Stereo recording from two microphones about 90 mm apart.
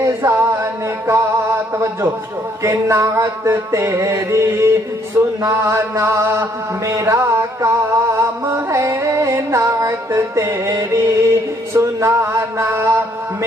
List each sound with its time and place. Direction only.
0.3 s music: 25° right (ahead or behind)
2.6 s music: 35° right (ahead or behind)
11.7 s mantra: 30° right (ahead or behind)